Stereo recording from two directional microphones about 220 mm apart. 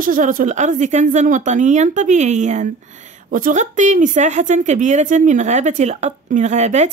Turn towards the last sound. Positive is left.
turn(degrees=-30)  # may be behind; listen again after turning